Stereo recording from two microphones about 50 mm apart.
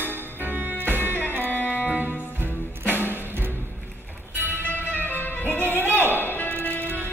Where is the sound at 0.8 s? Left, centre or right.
Right.